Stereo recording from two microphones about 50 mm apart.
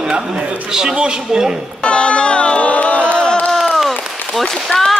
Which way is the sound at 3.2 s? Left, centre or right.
Centre.